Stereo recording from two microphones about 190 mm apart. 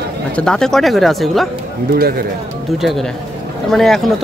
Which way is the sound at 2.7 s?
Centre (ahead or behind).